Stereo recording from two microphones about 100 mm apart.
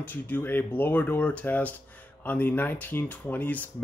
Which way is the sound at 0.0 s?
20° left (ahead or behind).